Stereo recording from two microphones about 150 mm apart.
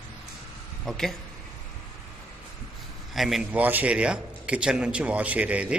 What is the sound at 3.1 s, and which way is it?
A man's voice, centre (ahead or behind).